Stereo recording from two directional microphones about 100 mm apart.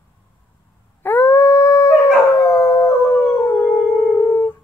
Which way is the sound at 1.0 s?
20° left (ahead or behind).